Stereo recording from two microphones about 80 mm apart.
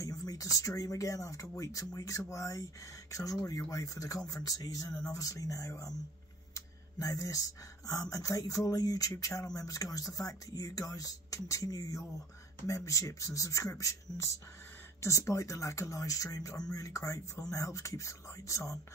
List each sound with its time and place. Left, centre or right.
0.0 s speech: left
9.1 s speech: left